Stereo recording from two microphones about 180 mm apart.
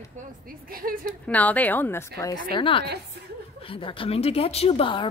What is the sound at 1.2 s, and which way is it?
Speech, 10° left (ahead or behind).